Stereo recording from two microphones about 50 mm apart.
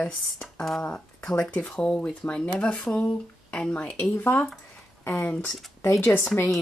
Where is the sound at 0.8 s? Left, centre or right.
Left.